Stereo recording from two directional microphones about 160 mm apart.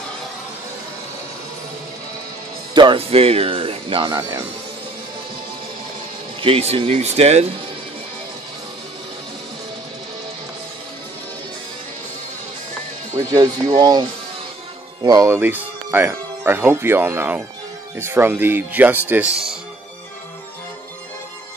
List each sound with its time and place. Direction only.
2.7 s speech: 30° right (ahead or behind)
6.4 s speech: 40° right (ahead or behind)
13.3 s speech: 25° right (ahead or behind)
15.0 s speech: 20° right (ahead or behind)